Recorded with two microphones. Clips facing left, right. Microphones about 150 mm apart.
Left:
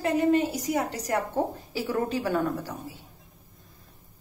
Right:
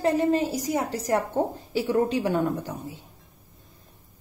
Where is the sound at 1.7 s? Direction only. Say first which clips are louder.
Right 5 dB; 25° right (ahead or behind).